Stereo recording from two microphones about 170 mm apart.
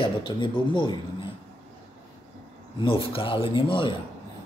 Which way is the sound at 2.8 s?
30° left (ahead or behind).